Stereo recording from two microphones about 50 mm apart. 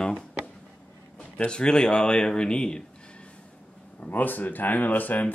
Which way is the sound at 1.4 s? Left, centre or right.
Centre.